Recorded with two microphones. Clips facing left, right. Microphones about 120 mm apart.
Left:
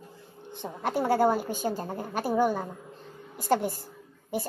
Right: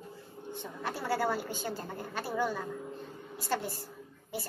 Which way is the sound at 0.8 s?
50° left (ahead or behind).